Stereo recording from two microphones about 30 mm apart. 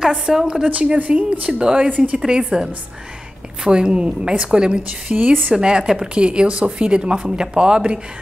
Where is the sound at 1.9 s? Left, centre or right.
Right.